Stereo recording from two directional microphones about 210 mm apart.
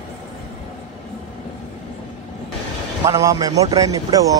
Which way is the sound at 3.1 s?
15° right (ahead or behind).